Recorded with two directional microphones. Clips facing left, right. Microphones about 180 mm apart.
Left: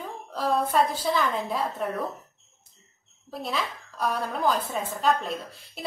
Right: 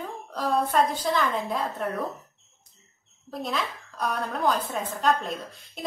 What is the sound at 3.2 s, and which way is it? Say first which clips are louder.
A woman's voice: right 1 dB; centre (ahead or behind).